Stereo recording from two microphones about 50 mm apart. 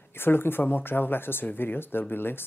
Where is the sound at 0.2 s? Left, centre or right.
Left.